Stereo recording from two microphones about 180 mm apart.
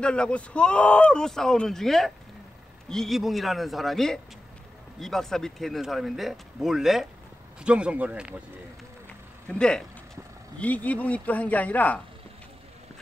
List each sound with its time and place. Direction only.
0.0 s speech: 5° left (ahead or behind)
9.5 s speech: 5° left (ahead or behind)